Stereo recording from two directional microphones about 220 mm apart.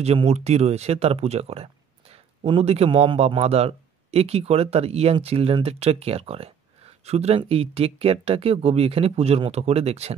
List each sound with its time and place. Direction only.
0.0 s speech: 30° right (ahead or behind)